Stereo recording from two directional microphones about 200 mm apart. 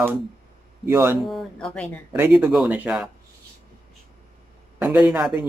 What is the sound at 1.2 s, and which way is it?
Speech, centre (ahead or behind).